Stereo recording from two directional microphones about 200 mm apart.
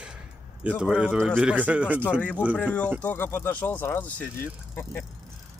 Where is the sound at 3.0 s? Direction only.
10° left (ahead or behind).